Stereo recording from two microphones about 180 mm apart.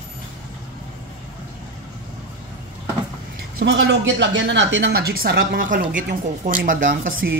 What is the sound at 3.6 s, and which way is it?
A woman's voice, 80° right.